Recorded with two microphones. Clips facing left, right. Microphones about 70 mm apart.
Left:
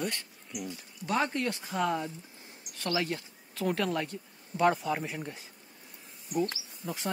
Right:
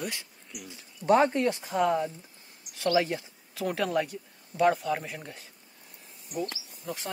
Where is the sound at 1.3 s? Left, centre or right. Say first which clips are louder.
Right 5 dB; centre.